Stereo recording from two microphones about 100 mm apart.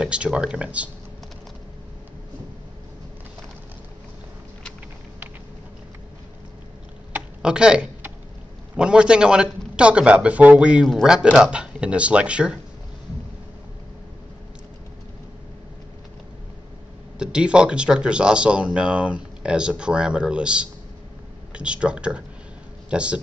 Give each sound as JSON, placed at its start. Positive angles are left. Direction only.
{"t": 0.0, "sound": "a man's voice", "side_deg": -10}
{"t": 7.4, "sound": "a man's voice", "side_deg": -10}
{"t": 17.2, "sound": "a man's voice", "side_deg": -10}